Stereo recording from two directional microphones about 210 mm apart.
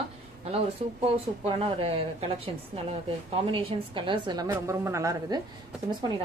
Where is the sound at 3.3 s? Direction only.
25° right (ahead or behind).